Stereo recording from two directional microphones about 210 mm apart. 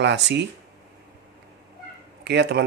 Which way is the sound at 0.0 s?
55° right (ahead or behind).